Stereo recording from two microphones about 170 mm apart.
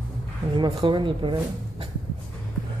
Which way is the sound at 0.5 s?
30° right (ahead or behind).